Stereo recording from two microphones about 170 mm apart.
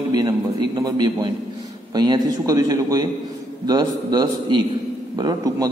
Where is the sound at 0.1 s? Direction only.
25° right (ahead or behind).